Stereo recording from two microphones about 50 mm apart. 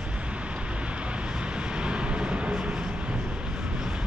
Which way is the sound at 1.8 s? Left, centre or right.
Right.